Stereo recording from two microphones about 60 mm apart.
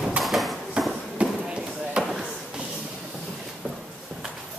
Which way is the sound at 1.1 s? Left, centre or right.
Centre.